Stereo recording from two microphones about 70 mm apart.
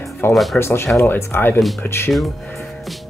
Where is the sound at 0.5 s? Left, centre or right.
Left.